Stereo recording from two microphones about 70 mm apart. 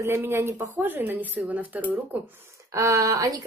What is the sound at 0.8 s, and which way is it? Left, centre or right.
A woman's voice, right.